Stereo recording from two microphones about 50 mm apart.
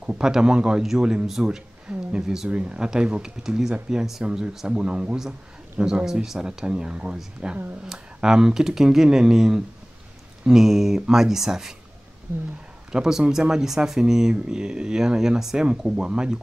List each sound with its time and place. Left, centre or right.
0.0 s speech: centre
1.9 s a sound: right
2.5 s speech: right
12.9 s speech: centre